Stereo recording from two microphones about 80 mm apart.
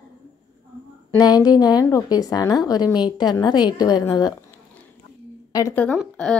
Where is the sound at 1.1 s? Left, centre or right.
Left.